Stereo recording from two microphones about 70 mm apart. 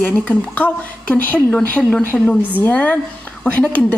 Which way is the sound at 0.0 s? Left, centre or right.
Centre.